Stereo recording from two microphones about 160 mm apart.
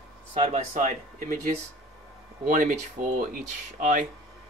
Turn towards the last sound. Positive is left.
turn(degrees=-55)  # may be behind; listen again after turning